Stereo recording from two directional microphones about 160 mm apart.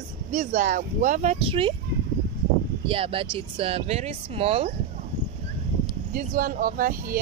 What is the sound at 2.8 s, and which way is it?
Speech, 35° right (ahead or behind).